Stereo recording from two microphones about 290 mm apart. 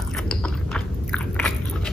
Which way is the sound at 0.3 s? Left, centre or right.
Centre.